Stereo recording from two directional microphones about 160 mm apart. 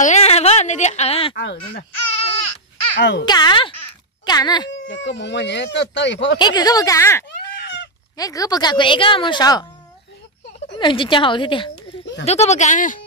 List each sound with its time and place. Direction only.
0.0 s speech: 45° left (ahead or behind)
1.4 s speech: 90° left
3.0 s speech: 90° left
3.3 s a woman's voice: 25° left (ahead or behind)
4.7 s speech: 90° left
6.3 s a woman's voice: 25° left (ahead or behind)
10.8 s a woman's voice: 30° left (ahead or behind)
11.7 s a sound: 90° left
12.3 s speech: 45° left (ahead or behind)